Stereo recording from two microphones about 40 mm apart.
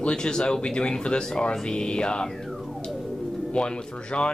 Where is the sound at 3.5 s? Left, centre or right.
Left.